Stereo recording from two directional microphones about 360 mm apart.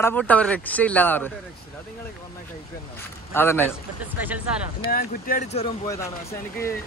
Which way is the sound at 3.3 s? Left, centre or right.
Centre.